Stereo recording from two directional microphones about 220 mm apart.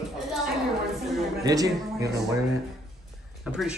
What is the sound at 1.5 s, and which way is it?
Speech, 15° right (ahead or behind).